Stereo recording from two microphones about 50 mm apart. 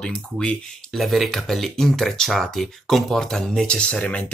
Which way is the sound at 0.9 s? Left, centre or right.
Centre.